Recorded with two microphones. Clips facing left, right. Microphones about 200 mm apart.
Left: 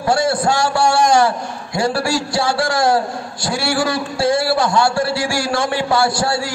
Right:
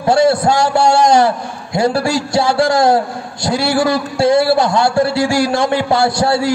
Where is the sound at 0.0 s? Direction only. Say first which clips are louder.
Right 5 dB; 25° right (ahead or behind).